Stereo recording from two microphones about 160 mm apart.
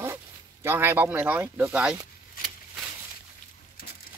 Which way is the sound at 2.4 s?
60° left (ahead or behind).